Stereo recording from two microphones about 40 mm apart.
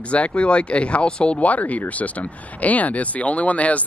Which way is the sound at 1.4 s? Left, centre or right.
Left.